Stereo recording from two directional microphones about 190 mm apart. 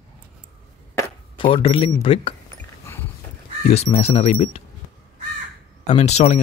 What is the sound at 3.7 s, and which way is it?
Speech, 35° left (ahead or behind).